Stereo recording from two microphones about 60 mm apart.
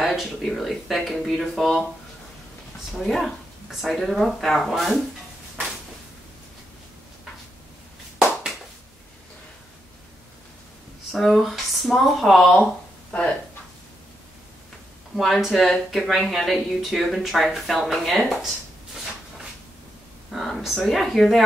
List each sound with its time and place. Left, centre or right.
0.0 s speech: centre
3.0 s speech: centre
11.1 s speech: centre
15.1 s speech: centre
20.2 s speech: centre